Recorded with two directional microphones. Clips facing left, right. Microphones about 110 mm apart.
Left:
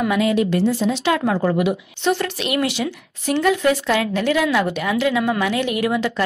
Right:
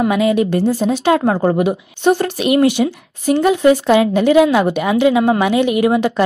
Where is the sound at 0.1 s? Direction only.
50° right (ahead or behind).